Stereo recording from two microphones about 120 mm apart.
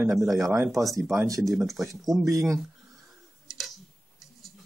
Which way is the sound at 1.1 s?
25° right (ahead or behind).